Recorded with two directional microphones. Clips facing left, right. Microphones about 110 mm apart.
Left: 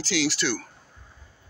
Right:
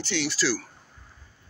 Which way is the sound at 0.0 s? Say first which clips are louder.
Left 2 dB; 90° left.